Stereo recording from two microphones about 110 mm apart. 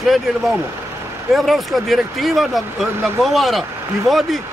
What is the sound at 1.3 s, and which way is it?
Speech, centre (ahead or behind).